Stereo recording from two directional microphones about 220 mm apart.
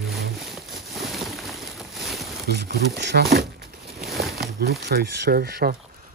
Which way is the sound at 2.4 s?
45° right (ahead or behind).